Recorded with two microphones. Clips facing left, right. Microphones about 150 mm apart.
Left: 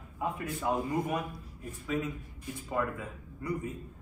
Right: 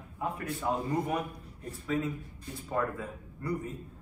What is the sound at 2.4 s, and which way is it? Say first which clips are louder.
A man's voice: even; 15° left (ahead or behind).